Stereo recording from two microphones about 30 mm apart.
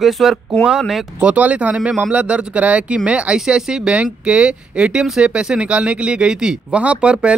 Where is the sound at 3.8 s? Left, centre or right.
Right.